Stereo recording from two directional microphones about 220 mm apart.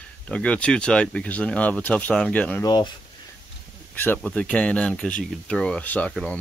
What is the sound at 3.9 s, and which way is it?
Speech, 10° left (ahead or behind).